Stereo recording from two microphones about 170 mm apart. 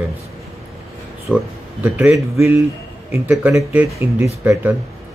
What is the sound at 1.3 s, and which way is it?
Speech, 10° right (ahead or behind).